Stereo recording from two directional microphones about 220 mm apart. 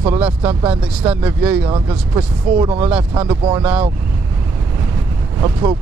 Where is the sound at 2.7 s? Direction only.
5° right (ahead or behind).